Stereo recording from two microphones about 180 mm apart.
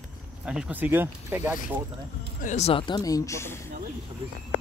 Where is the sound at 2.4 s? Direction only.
40° left (ahead or behind); by 3.6 s 15° left (ahead or behind).